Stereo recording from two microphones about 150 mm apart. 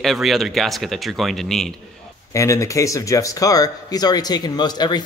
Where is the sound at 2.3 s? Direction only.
20° left (ahead or behind).